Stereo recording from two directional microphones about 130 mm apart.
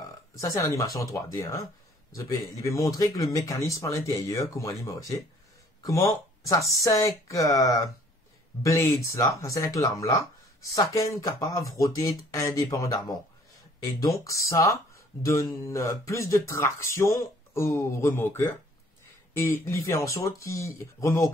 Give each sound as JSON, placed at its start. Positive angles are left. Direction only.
{"t": 0.4, "sound": "speech", "side_deg": 25}